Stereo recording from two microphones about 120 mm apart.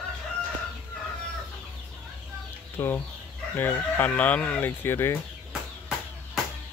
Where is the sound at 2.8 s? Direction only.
20° left (ahead or behind).